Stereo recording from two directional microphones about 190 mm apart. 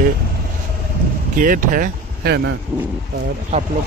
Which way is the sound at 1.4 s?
45° right (ahead or behind).